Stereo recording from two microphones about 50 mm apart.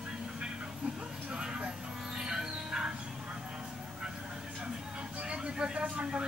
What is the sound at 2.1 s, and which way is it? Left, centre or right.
Music, centre.